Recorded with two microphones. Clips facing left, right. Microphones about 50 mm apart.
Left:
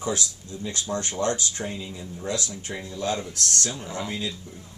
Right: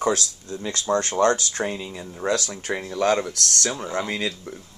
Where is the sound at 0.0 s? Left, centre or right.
Right.